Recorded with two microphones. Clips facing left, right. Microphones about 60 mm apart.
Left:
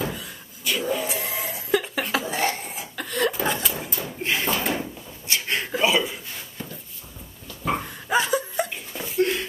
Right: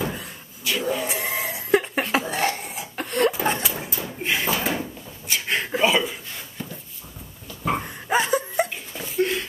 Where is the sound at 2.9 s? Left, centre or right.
Right.